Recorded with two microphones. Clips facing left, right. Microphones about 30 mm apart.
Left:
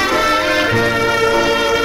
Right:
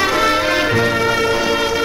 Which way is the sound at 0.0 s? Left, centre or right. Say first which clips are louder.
Left 1 dB; centre.